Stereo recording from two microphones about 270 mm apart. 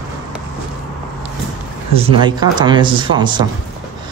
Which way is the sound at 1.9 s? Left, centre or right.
Centre.